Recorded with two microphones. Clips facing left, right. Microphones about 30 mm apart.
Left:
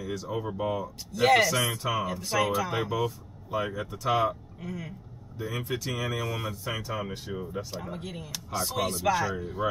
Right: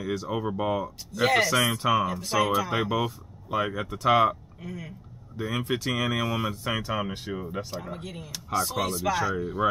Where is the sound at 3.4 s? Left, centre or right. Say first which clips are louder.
Right 3 dB; right.